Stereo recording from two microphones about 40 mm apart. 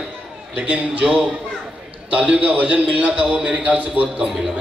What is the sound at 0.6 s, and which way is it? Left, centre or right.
A man's voice, right.